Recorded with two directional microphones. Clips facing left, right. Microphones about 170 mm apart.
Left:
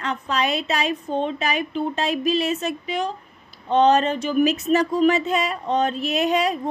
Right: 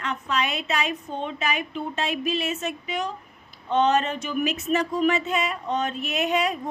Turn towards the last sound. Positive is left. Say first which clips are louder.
# left 4 dB
turn(degrees=35)  # may be behind; listen again after turning